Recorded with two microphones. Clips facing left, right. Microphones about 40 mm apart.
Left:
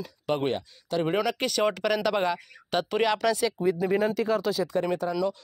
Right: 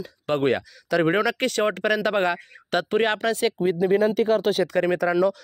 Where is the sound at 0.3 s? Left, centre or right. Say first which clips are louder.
Right 5 dB; right.